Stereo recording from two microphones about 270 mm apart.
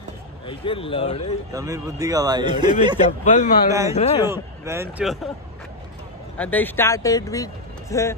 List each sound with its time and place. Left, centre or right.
0.5 s speech: centre
1.5 s speech: centre
3.0 s speech: left
4.2 s speech: centre
6.3 s speech: centre